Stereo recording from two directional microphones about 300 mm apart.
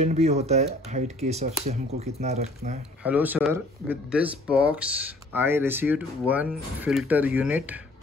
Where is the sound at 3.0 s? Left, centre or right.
Centre.